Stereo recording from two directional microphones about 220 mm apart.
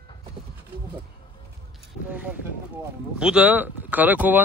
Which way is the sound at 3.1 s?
5° right (ahead or behind).